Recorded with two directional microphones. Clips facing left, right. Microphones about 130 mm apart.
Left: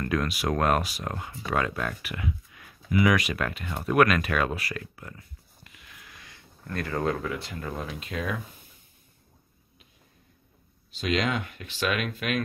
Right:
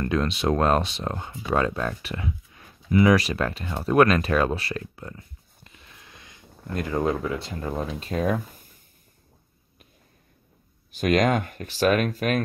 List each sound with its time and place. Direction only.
0.0 s speech: 25° right (ahead or behind)
10.9 s speech: 50° right (ahead or behind)